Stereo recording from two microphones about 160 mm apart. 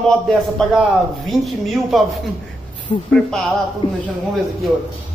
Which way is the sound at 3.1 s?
5° left (ahead or behind).